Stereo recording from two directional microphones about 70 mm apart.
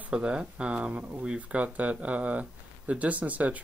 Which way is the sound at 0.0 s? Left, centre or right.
Centre.